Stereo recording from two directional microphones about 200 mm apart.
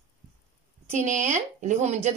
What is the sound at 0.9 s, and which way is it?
Speech, 40° right (ahead or behind).